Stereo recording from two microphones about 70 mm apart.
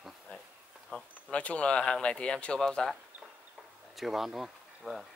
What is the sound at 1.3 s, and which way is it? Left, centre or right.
Speech, centre.